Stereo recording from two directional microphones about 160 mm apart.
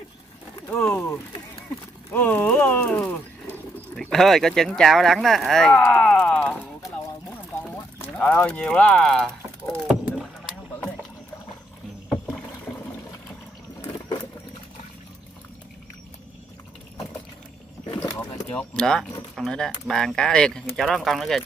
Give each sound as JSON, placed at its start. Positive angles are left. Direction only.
{"t": 0.7, "sound": "speech", "side_deg": 15}
{"t": 8.0, "sound": "speech", "side_deg": 5}
{"t": 9.8, "sound": "rowboat", "side_deg": -5}
{"t": 12.3, "sound": "rowboat", "side_deg": 10}
{"t": 13.7, "sound": "vehicle", "side_deg": 25}
{"t": 18.0, "sound": "a sound", "side_deg": 20}
{"t": 18.5, "sound": "speech", "side_deg": 5}